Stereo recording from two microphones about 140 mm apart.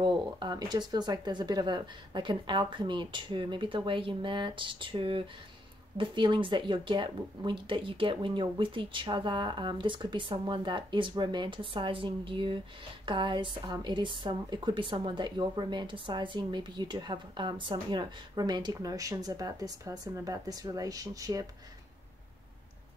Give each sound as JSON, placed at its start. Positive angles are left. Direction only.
{"t": 0.0, "sound": "a woman's voice", "side_deg": -30}